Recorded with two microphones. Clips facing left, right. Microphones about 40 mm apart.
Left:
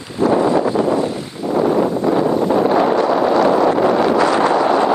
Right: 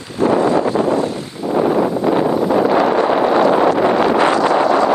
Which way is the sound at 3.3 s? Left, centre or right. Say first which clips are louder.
Right 1 dB; right.